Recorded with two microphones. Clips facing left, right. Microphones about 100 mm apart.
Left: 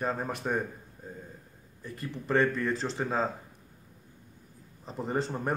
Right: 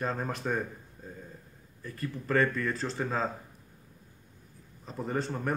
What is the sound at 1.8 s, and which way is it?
Speech, 20° left (ahead or behind).